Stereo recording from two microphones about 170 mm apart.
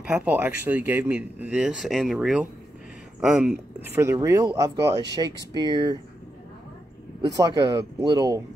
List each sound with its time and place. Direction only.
0.1 s speech: 10° right (ahead or behind)
3.9 s speech: 15° right (ahead or behind)
7.2 s speech: 25° right (ahead or behind)